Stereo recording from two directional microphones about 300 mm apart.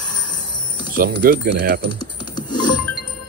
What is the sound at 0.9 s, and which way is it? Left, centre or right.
Speech, right.